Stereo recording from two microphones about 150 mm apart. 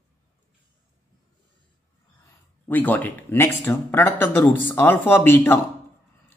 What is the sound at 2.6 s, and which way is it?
Speech, 10° left (ahead or behind).